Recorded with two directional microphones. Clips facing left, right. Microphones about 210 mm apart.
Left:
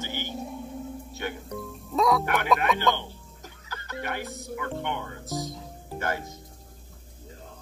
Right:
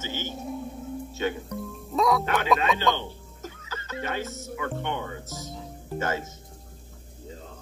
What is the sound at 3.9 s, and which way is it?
Speech, 20° right (ahead or behind).